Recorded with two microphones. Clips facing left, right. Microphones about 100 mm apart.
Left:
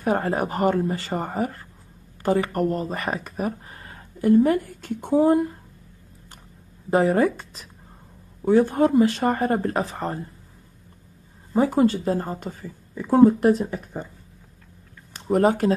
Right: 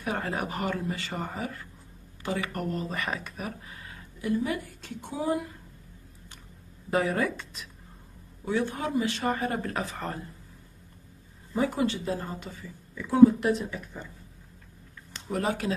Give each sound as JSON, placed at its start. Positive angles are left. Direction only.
{"t": 0.0, "sound": "speech", "side_deg": 35}
{"t": 6.9, "sound": "speech", "side_deg": 35}
{"t": 11.5, "sound": "speech", "side_deg": 40}
{"t": 15.1, "sound": "speech", "side_deg": 45}